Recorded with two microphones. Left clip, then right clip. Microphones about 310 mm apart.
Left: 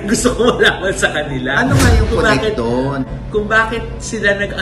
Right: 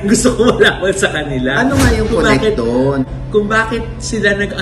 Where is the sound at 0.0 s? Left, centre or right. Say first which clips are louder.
Right 2 dB; centre.